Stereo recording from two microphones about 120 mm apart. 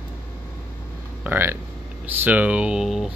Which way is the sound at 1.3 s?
20° right (ahead or behind).